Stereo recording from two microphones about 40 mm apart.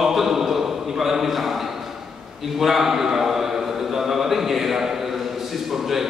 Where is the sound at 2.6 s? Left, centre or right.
Centre.